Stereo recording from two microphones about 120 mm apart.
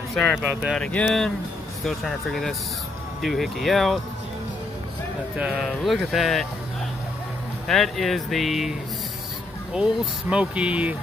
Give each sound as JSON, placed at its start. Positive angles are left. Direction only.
{"t": 0.1, "sound": "speech", "side_deg": 5}
{"t": 0.4, "sound": "speech", "side_deg": -5}
{"t": 0.7, "sound": "speech", "side_deg": 5}
{"t": 5.4, "sound": "speech", "side_deg": -5}
{"t": 7.6, "sound": "speech", "side_deg": 0}
{"t": 10.3, "sound": "speech", "side_deg": -10}